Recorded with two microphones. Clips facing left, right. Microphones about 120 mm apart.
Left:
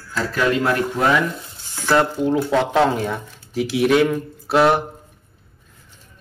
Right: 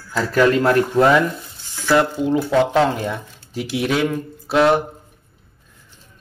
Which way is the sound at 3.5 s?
Centre (ahead or behind).